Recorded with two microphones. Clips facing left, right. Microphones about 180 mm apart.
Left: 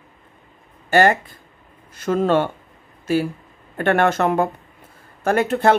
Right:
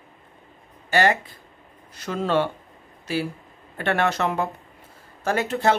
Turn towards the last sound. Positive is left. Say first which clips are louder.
# left 5 dB
turn(degrees=55)  # may be behind; listen again after turning